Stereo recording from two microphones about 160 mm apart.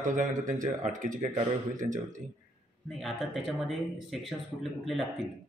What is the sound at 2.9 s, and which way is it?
Speech, centre (ahead or behind).